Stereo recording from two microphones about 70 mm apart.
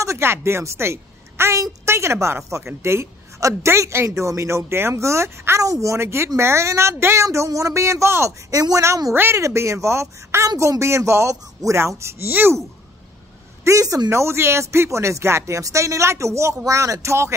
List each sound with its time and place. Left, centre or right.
0.0 s a woman's voice: right
5.6 s speech: right
9.1 s speech: right
9.4 s speech: right
13.7 s speech: right
14.1 s speech: right